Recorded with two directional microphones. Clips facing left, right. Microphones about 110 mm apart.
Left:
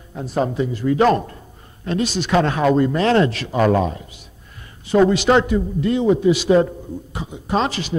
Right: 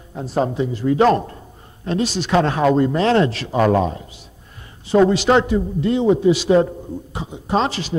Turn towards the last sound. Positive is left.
turn(degrees=-30)  # may be behind; listen again after turning